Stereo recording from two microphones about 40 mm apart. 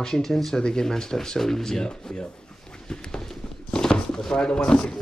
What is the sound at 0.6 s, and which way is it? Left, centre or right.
Speech, centre.